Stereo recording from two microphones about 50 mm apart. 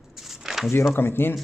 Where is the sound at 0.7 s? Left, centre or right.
Left.